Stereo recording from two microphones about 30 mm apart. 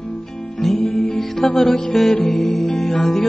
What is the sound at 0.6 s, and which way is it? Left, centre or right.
Music, centre.